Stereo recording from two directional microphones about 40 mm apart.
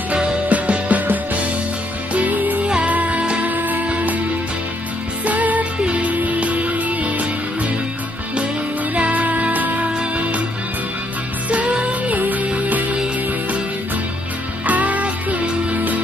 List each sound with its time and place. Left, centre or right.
0.5 s music: right
2.1 s music: right
3.5 s music: right
5.2 s music: right
8.9 s music: right
11.5 s music: right
12.2 s music: right
14.7 s music: right